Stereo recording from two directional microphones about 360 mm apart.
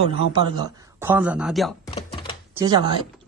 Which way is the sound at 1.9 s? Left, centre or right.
Centre.